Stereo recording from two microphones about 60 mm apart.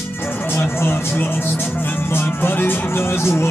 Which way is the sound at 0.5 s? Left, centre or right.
Left.